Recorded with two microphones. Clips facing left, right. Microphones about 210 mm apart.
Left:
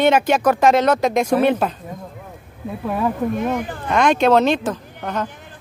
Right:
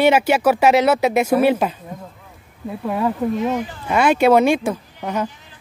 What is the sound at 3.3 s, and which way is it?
Speech, 55° left (ahead or behind).